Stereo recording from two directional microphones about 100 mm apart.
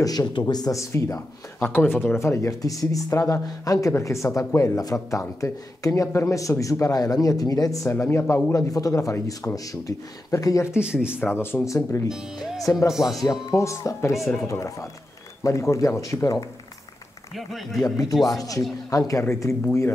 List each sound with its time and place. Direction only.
0.0 s speech: 40° left (ahead or behind)
1.7 s speech: 20° left (ahead or behind)
10.8 s speech: 10° right (ahead or behind)
11.3 s speech: 25° left (ahead or behind)
12.9 s a man's voice: 5° right (ahead or behind)
13.5 s speech: 30° left (ahead or behind)
14.1 s a man's voice: centre (ahead or behind)
14.5 s speech: 30° left (ahead or behind)
17.4 s a man's voice: centre (ahead or behind)
17.8 s speech: 35° left (ahead or behind)
18.1 s a man's voice: centre (ahead or behind)
18.9 s speech: 35° left (ahead or behind)